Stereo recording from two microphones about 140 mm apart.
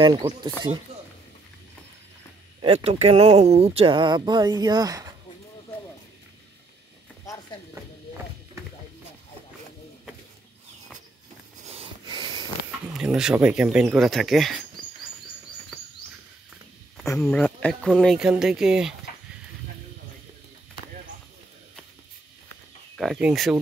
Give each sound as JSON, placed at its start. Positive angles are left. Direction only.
{"t": 0.0, "sound": "speech", "side_deg": -35}
{"t": 0.9, "sound": "a sound", "side_deg": -45}
{"t": 2.6, "sound": "speech", "side_deg": -45}
{"t": 11.6, "sound": "a sound", "side_deg": -45}
{"t": 12.9, "sound": "speech", "side_deg": -5}
{"t": 17.2, "sound": "speech", "side_deg": 5}
{"t": 22.9, "sound": "speech", "side_deg": -5}